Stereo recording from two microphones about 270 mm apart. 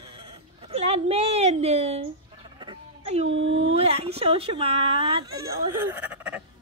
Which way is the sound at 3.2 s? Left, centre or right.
Right.